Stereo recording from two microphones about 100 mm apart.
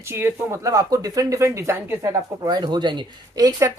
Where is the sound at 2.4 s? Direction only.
50° right (ahead or behind).